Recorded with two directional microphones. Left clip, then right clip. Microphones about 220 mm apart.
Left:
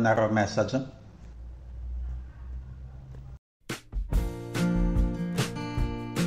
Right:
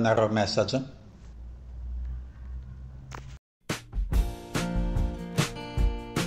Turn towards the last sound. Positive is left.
turn(degrees=0)  # may be behind; listen again after turning